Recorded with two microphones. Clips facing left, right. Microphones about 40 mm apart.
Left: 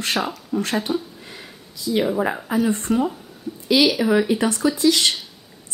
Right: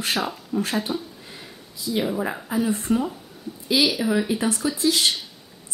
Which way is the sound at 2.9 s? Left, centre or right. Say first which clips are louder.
Left 1 dB; left.